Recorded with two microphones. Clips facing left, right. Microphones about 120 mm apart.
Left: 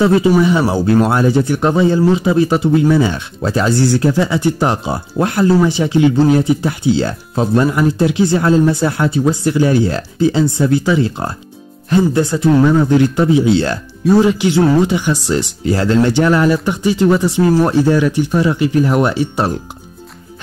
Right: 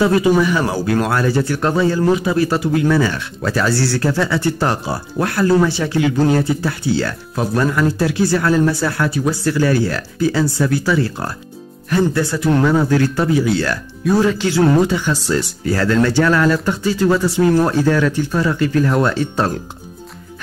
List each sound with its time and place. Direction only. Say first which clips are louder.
0.0 s speech: left 3 dB; 25° left (ahead or behind)